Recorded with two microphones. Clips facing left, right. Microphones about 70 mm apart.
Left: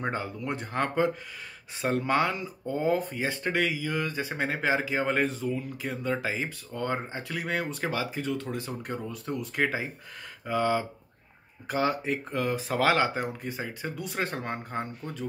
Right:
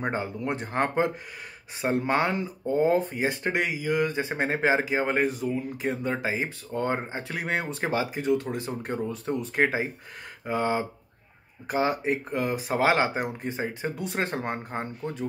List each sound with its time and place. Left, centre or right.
0.0 s speech: right